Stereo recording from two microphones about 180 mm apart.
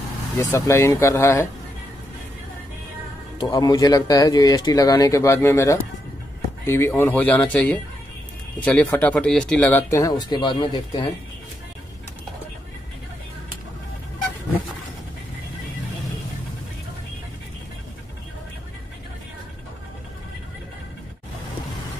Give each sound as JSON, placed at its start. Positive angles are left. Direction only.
{"t": 0.4, "sound": "speech", "side_deg": 20}
{"t": 3.3, "sound": "speech", "side_deg": 25}